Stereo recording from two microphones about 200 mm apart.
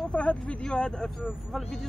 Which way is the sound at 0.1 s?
5° left (ahead or behind).